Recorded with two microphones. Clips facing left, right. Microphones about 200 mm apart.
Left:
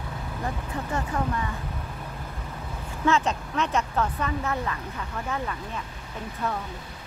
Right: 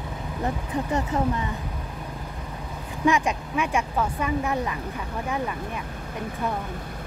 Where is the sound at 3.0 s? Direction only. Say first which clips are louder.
Right 2 dB; 15° right (ahead or behind).